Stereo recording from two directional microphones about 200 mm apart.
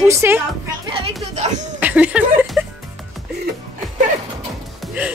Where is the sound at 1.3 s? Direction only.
35° right (ahead or behind).